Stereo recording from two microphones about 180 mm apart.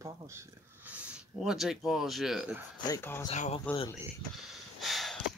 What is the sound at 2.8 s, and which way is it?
Speech, 15° left (ahead or behind).